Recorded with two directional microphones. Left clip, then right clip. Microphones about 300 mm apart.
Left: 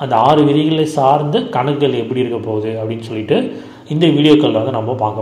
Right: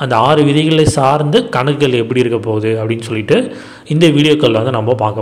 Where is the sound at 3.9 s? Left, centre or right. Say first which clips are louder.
Right 1 dB; right.